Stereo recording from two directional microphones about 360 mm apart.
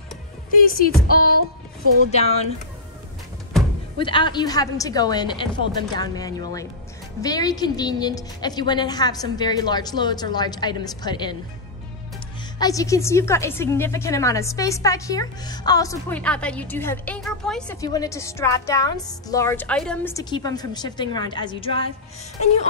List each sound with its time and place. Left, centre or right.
0.6 s a sound: left
2.0 s a woman's voice: centre
4.0 s a woman's voice: centre
12.5 s a woman's voice: centre